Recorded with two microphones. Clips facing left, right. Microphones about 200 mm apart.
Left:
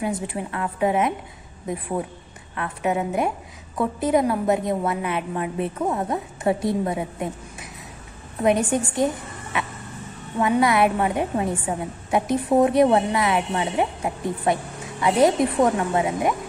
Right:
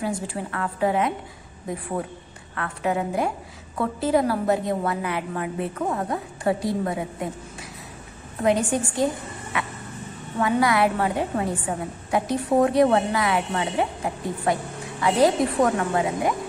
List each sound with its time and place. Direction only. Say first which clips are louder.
0.0 s a woman's voice: left 1 dB; 20° left (ahead or behind)
2.5 s a woman's voice: left 1 dB; 20° left (ahead or behind)
8.5 s a woman's voice: left 1 dB; 20° left (ahead or behind)